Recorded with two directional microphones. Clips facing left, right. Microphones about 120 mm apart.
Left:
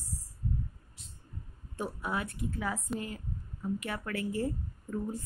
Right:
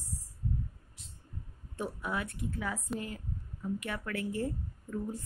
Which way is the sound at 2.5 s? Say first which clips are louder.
Left 2 dB; 25° left (ahead or behind).